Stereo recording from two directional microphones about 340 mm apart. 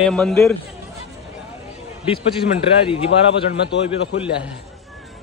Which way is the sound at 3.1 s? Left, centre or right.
Left.